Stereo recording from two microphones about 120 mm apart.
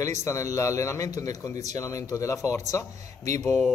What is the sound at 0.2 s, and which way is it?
Speech, 25° left (ahead or behind).